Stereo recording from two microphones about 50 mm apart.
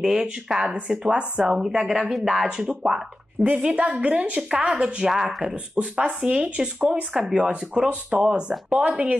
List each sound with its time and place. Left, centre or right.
0.0 s speech: centre
0.7 s speech: right
1.4 s speech: centre; by 4.4 s right
4.4 s speech: centre
7.2 s speech: centre